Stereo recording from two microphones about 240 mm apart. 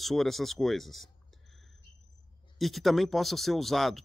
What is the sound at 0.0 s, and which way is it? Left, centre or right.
Speech, centre.